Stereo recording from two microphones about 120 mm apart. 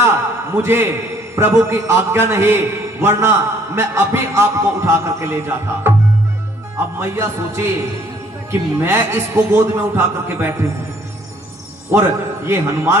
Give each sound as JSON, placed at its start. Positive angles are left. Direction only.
{"t": 0.6, "sound": "a man's voice", "side_deg": -20}
{"t": 5.9, "sound": "tabla", "side_deg": -20}
{"t": 7.0, "sound": "a man's voice", "side_deg": -20}
{"t": 11.9, "sound": "a man's voice", "side_deg": -20}